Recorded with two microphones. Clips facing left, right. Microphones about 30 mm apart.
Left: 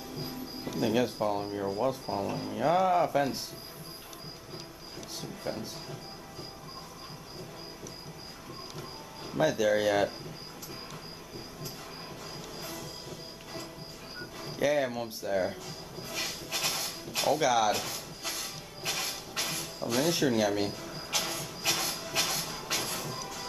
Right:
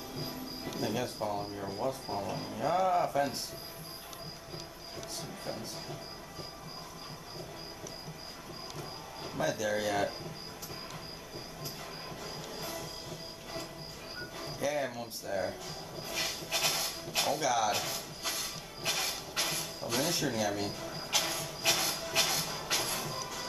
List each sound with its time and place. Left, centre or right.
0.2 s music: centre
1.0 s speech: centre
2.0 s speech: centre
2.5 s speech: centre
5.4 s speech: centre
8.7 s a sound: centre
9.5 s speech: centre
12.5 s train: centre
14.6 s speech: centre
16.0 s a sound: centre
17.4 s speech: centre
17.6 s a sound: centre
20.8 s a sound: centre